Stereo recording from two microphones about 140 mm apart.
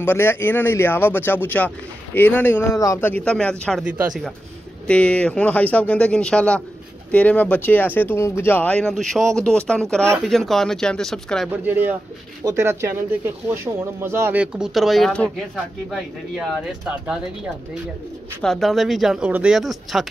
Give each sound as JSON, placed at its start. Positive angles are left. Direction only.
{"t": 0.0, "sound": "speech", "side_deg": 15}
{"t": 3.8, "sound": "speech", "side_deg": -5}
{"t": 4.8, "sound": "speech", "side_deg": 10}
{"t": 11.6, "sound": "speech", "side_deg": -10}
{"t": 14.4, "sound": "speech", "side_deg": -5}
{"t": 18.4, "sound": "speech", "side_deg": 0}